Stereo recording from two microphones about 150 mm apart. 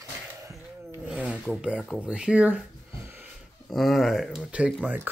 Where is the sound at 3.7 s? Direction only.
Centre (ahead or behind).